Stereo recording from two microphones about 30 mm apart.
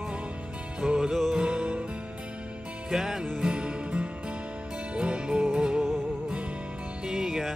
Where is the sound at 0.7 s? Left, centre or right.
Right.